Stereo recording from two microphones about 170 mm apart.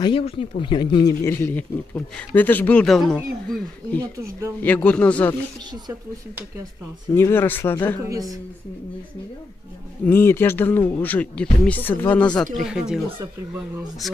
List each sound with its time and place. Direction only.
0.0 s speech: 30° left (ahead or behind)
1.2 s speech: 10° left (ahead or behind)
7.2 s speech: 15° left (ahead or behind)
8.0 s a woman's voice: 20° right (ahead or behind)
10.0 s speech: 15° left (ahead or behind)
12.5 s speech: 5° right (ahead or behind)
14.0 s speech: centre (ahead or behind)